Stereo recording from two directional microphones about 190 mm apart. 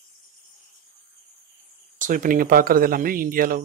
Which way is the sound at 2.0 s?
45° right (ahead or behind).